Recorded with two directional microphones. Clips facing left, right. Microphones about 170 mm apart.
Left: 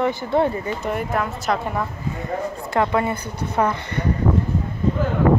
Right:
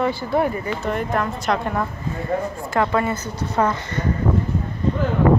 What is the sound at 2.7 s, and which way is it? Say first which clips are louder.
Speech: even; 20° left (ahead or behind).